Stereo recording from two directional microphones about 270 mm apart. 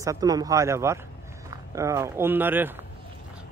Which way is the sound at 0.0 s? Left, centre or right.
Centre.